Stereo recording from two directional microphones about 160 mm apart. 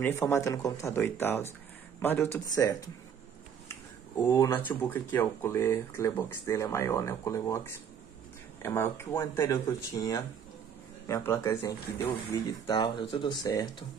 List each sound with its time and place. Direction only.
0.0 s a man's voice: 15° left (ahead or behind)
4.2 s speech: 15° left (ahead or behind)
12.4 s speech: 30° left (ahead or behind)